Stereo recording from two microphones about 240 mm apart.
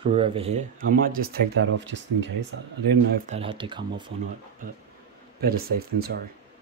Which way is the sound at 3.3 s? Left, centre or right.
Right.